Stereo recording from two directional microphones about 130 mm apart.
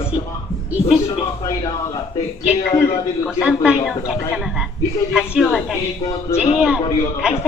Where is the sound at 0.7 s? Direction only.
10° right (ahead or behind).